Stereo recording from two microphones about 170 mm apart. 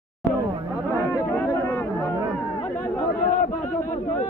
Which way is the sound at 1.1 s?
10° left (ahead or behind).